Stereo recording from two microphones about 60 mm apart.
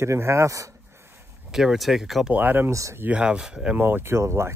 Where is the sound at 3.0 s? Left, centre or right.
Centre.